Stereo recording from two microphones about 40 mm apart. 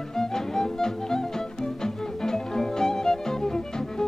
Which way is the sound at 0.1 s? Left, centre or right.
Centre.